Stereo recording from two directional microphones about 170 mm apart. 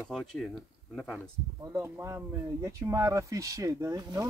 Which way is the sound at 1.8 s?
15° right (ahead or behind).